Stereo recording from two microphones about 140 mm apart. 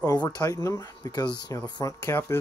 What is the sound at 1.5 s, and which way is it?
Speech, 10° left (ahead or behind).